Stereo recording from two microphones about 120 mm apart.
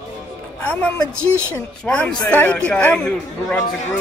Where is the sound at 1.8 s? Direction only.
10° left (ahead or behind).